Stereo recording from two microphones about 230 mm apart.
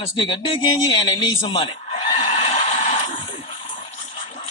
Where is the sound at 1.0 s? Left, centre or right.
Centre.